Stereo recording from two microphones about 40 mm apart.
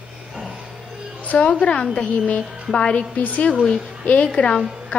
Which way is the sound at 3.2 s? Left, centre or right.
Left.